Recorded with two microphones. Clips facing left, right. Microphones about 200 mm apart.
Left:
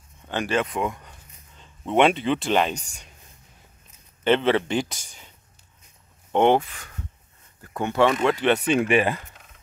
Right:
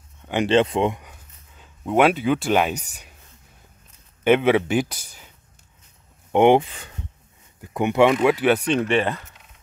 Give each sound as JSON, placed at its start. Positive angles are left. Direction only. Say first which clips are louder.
{"t": 0.3, "sound": "speech", "louder": "right 6 dB", "side_deg": -20}
{"t": 1.0, "sound": "a sound", "louder": "right 1 dB", "side_deg": -5}
{"t": 4.2, "sound": "speech", "louder": "right 3 dB", "side_deg": -10}
{"t": 6.3, "sound": "speech", "louder": "right 4 dB", "side_deg": -15}
{"t": 8.5, "sound": "speech", "louder": "even", "side_deg": 5}